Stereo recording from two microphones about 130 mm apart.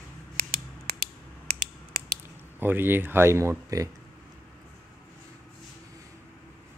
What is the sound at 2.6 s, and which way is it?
Speech, 15° right (ahead or behind).